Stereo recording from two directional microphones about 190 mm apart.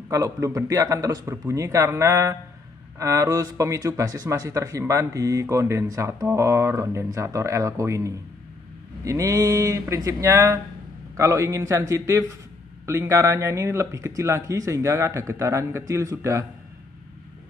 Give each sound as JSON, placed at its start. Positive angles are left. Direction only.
{"t": 0.1, "sound": "speech", "side_deg": -15}